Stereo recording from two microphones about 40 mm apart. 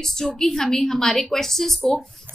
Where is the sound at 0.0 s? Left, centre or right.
Centre.